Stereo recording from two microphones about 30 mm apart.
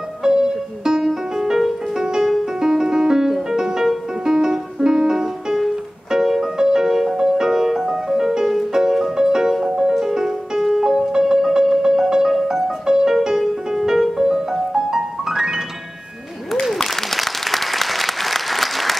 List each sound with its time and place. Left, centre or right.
0.2 s music: centre
16.8 s applause: centre